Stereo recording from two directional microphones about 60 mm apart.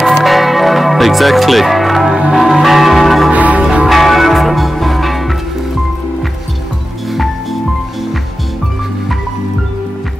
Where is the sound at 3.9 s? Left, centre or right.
Centre.